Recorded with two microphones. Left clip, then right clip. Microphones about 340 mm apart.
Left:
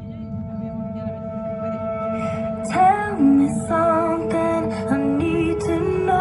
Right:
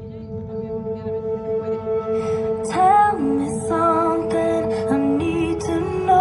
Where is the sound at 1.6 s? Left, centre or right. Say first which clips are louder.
Right 2 dB; centre.